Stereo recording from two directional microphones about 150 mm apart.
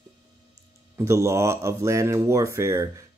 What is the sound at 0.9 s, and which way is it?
Speech, 20° right (ahead or behind).